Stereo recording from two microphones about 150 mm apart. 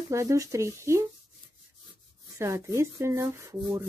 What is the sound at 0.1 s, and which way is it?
Speech, 20° right (ahead or behind).